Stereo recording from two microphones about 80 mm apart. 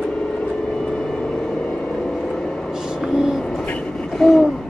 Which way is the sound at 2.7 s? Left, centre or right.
Centre.